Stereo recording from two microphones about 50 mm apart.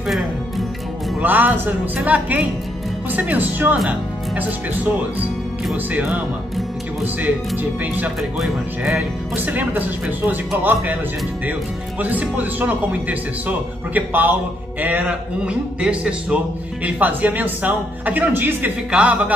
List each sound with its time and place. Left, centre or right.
1.2 s speech: right
7.8 s speech: right
9.3 s speech: right
12.0 s speech: right
15.4 s music: right
16.8 s speech: right
18.9 s music: right